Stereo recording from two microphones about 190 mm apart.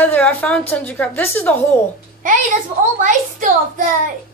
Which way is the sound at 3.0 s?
45° right (ahead or behind).